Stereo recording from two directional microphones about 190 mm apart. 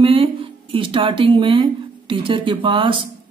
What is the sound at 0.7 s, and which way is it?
Speech, 25° right (ahead or behind).